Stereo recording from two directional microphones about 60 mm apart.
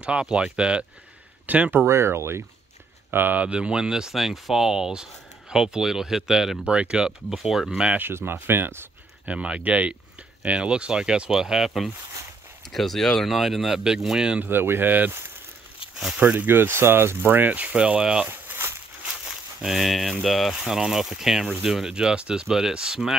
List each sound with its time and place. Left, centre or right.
0.0 s speech: centre
1.4 s speech: right
1.9 s speech: right
3.1 s speech: right; by 6.7 s centre
6.7 s speech: centre
8.0 s speech: right
9.3 s speech: centre
14.4 s speech: right
16.2 s speech: right
16.4 s speech: right; by 18.3 s centre
18.3 s a sound: right
19.6 s speech: centre